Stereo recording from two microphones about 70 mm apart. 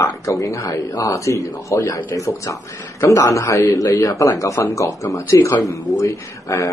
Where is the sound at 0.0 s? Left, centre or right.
Left.